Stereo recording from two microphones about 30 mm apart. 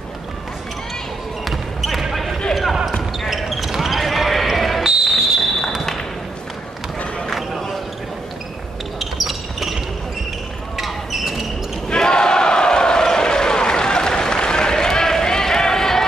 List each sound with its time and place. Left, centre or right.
1.4 s basketball bounce: centre
3.3 s basketball bounce: centre
5.1 s fireworks: centre
7.2 s a sound: centre
9.0 s basketball bounce: centre
10.8 s basketball bounce: centre
11.9 s a sound: left